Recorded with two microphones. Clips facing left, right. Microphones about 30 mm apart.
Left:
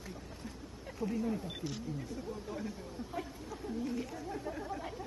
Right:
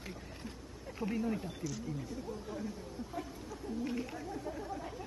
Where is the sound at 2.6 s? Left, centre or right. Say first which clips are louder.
Even; left.